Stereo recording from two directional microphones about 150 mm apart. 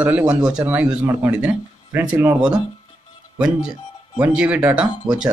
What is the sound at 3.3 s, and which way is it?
Speech, 5° right (ahead or behind).